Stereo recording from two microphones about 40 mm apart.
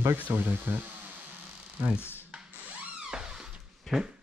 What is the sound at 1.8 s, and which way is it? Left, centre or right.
Speech, right.